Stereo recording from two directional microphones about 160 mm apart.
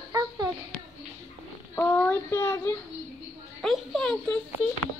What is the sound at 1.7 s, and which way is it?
A child's voice, 10° left (ahead or behind).